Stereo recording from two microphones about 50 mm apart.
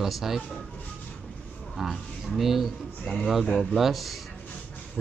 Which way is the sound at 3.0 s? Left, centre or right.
Centre.